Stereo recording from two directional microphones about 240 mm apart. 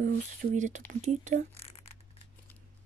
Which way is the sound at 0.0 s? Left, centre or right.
Right.